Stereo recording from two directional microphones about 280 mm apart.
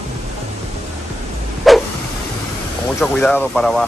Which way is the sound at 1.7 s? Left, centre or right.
Centre.